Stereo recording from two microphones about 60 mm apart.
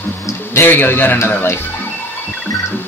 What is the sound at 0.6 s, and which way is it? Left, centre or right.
Speech, left.